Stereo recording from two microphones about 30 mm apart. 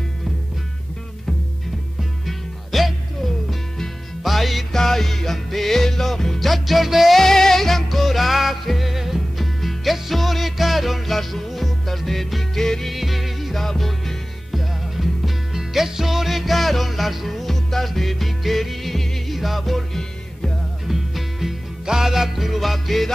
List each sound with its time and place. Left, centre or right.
2.2 s music: centre
4.2 s music: centre
7.2 s music: centre
12.9 s music: centre
14.6 s music: centre
17.5 s music: centre
19.9 s music: centre
20.8 s music: centre